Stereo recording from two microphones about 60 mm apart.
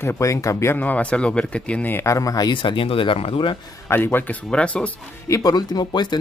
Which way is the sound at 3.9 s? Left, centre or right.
Left.